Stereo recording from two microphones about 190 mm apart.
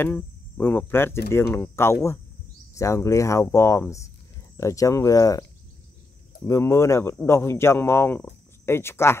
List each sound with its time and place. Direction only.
0.0 s cricket: 10° left (ahead or behind)
1.3 s speech: 10° left (ahead or behind)
6.4 s speech: 15° left (ahead or behind)